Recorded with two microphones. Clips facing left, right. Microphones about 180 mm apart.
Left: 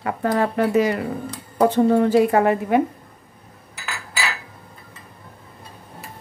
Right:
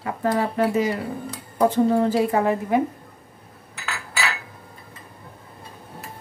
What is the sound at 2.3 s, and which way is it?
Speech, 65° left (ahead or behind).